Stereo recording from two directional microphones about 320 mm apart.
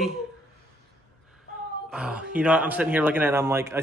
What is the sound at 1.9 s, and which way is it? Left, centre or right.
Speech, centre.